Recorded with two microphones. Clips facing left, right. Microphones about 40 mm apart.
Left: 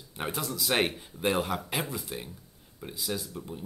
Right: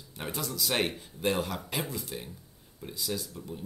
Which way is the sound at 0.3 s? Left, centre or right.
Centre.